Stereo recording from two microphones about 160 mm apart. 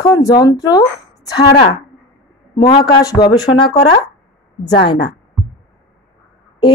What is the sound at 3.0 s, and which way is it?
Speech, 25° left (ahead or behind).